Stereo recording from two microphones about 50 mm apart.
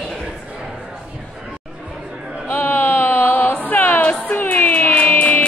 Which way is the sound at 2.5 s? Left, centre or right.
Left.